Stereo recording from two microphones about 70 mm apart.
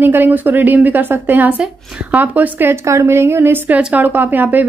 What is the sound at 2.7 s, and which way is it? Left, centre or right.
A woman's voice, right.